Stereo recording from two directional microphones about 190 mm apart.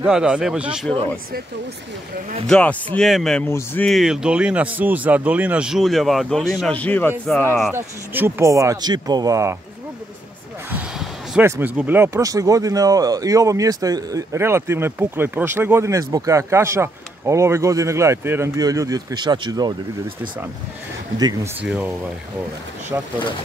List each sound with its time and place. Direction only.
0.0 s speech: 5° right (ahead or behind)
2.4 s speech: 5° left (ahead or behind)
7.7 s speech: 10° right (ahead or behind)
10.7 s a sound: 5° right (ahead or behind)
11.7 s speech: 10° right (ahead or behind)
21.6 s speech: 5° right (ahead or behind)